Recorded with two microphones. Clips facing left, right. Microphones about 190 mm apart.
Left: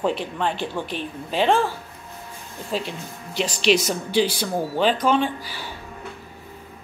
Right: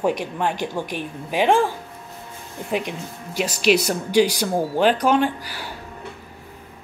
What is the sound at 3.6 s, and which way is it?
A woman's voice, 10° right (ahead or behind).